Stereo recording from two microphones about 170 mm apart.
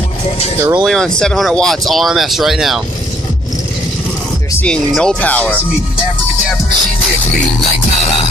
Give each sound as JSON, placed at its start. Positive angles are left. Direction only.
{"t": 0.6, "sound": "speech", "side_deg": -15}
{"t": 0.8, "sound": "speech", "side_deg": 5}
{"t": 4.6, "sound": "speech", "side_deg": 5}